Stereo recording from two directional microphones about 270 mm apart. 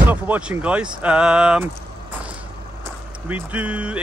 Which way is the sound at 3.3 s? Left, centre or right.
Centre.